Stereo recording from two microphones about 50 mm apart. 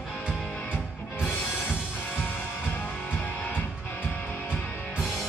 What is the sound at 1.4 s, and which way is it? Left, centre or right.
Music, left.